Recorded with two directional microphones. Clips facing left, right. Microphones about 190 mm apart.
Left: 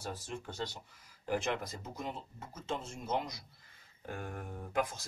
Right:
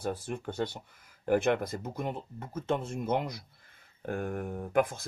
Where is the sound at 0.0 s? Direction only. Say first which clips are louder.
Right 8 dB; 55° right (ahead or behind).